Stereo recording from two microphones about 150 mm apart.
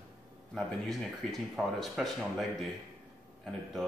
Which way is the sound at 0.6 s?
Centre (ahead or behind).